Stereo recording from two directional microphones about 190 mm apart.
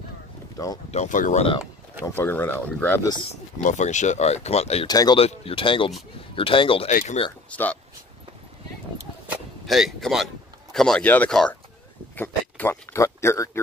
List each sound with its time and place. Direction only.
0.9 s speech: 40° left (ahead or behind)
2.1 s speech: 10° left (ahead or behind)
3.5 s speech: 40° left (ahead or behind)
4.8 s speech: 20° left (ahead or behind)
6.9 s speech: 45° left (ahead or behind)
7.5 s speech: 10° left (ahead or behind)
9.3 s speech: centre (ahead or behind); by 13.5 s 15° left (ahead or behind)